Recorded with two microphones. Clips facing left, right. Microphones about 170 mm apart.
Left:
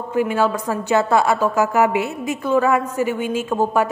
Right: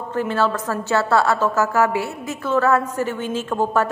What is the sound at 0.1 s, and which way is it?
A woman's voice, 10° left (ahead or behind).